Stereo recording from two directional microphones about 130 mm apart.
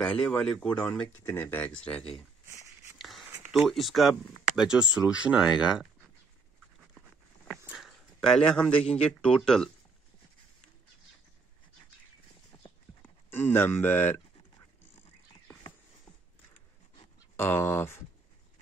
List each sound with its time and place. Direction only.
0.2 s speech: 5° left (ahead or behind)
2.4 s a sound: 20° right (ahead or behind)
3.0 s a sound: centre (ahead or behind)
3.6 s speech: centre (ahead or behind)
7.7 s speech: centre (ahead or behind)
13.0 s speech: 15° left (ahead or behind)
17.4 s speech: 20° left (ahead or behind)